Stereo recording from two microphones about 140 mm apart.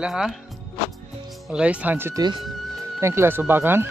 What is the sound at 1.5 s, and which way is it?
Speech, 10° right (ahead or behind).